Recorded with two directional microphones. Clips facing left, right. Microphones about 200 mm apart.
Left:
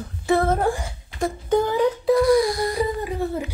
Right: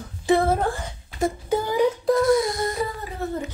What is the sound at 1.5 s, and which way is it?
Speech, 10° right (ahead or behind).